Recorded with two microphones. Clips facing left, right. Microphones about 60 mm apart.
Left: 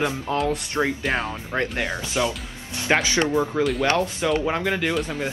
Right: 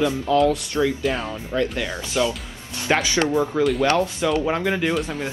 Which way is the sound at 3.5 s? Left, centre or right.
Centre.